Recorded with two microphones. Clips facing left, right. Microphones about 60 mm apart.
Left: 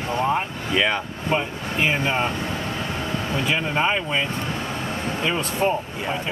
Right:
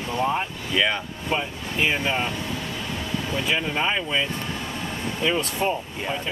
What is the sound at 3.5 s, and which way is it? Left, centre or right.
Speech, centre.